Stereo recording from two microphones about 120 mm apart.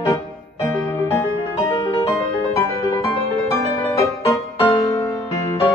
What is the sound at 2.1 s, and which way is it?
Music, 25° left (ahead or behind).